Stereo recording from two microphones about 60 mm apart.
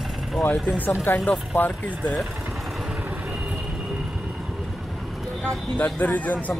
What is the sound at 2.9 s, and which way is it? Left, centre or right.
Vehicle, right.